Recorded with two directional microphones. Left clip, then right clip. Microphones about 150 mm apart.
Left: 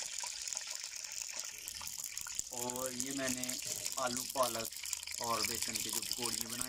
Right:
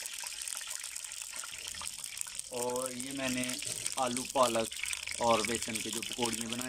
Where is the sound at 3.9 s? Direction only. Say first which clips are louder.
Right 6 dB; 15° right (ahead or behind).